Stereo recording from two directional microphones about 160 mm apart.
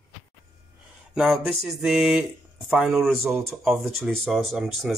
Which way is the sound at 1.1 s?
Centre (ahead or behind).